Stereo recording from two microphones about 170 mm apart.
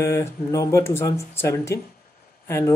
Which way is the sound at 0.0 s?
15° left (ahead or behind).